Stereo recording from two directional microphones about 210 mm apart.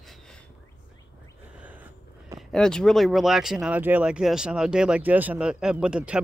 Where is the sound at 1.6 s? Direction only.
10° right (ahead or behind).